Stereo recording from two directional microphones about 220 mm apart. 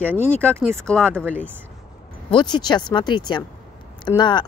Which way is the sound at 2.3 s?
20° left (ahead or behind).